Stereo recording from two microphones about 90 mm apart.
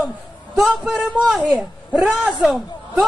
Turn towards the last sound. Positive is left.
turn(degrees=0)  # may be behind; listen again after turning